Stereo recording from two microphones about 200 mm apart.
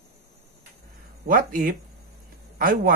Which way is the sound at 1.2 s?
45° right (ahead or behind).